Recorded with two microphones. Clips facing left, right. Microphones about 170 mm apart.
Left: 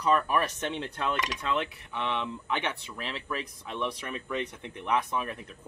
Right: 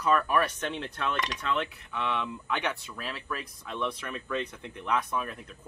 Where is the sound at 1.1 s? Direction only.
15° left (ahead or behind).